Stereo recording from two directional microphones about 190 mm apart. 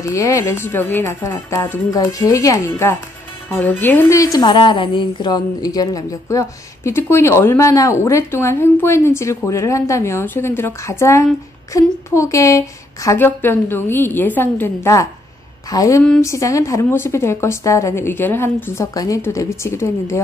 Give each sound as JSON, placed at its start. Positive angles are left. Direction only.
{"t": 0.0, "sound": "speech", "side_deg": 15}